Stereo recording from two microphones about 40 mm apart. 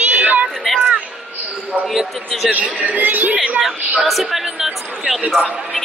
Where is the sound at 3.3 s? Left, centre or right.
Right.